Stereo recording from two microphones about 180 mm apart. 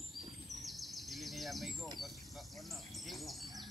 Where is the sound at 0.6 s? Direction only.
Centre (ahead or behind).